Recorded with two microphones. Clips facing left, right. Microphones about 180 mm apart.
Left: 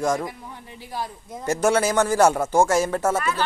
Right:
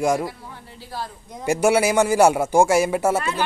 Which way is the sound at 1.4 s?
10° right (ahead or behind).